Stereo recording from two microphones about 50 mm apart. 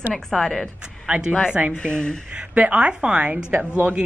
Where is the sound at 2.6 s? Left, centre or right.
Right.